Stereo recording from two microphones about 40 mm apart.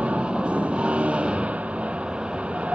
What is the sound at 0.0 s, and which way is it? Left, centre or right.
Vehicle, right.